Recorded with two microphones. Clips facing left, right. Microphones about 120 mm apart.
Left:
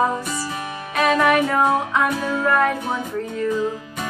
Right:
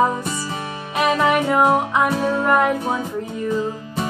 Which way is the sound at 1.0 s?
15° right (ahead or behind).